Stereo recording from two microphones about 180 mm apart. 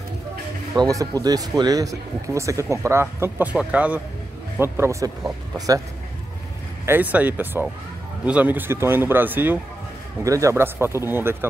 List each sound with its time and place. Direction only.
0.7 s speech: 20° right (ahead or behind)
6.9 s speech: 10° right (ahead or behind)